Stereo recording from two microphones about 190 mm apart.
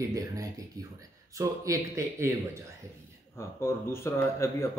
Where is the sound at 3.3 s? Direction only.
15° left (ahead or behind).